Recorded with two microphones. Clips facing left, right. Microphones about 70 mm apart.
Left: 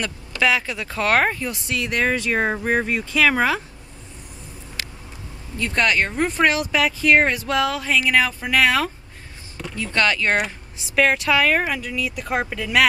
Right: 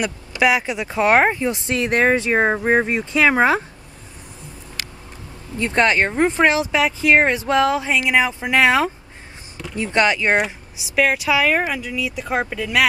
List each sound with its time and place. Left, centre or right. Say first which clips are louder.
0.0 s speech: right 3 dB; centre
5.6 s speech: right 3 dB; right
10.3 s speech: right 3 dB; centre